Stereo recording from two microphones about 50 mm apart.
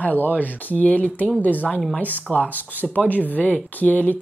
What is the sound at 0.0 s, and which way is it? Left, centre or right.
Speech, left.